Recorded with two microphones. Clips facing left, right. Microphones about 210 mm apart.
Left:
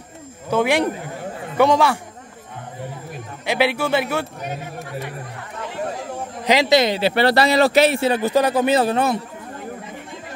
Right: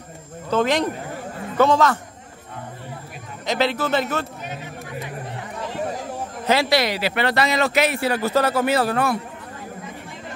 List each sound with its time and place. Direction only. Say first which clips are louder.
0.5 s a man's voice: left 2 dB; 10° left (ahead or behind)
3.4 s a man's voice: left 2 dB; 10° left (ahead or behind)
6.4 s speech: left 3 dB; 15° left (ahead or behind)